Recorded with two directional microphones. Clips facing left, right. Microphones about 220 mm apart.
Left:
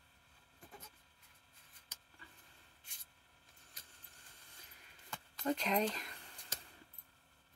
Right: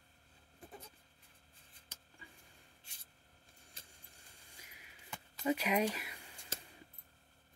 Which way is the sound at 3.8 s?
30° right (ahead or behind).